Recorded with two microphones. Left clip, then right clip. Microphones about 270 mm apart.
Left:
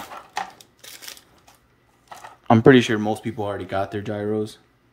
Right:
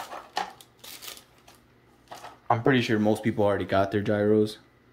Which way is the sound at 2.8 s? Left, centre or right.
Centre.